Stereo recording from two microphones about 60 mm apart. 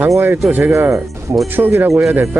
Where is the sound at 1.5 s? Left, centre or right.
Right.